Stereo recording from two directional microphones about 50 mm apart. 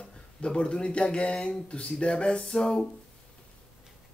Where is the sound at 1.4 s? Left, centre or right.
Centre.